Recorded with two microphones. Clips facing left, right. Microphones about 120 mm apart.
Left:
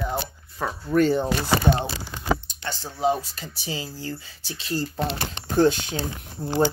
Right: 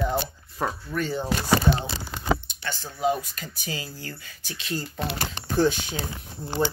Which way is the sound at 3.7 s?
15° left (ahead or behind).